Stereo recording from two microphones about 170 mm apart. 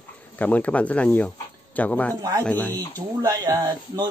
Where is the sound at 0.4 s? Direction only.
10° left (ahead or behind).